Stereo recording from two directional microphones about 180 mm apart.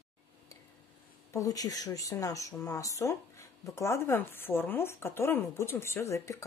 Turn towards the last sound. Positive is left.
turn(degrees=15)  # may be behind; listen again after turning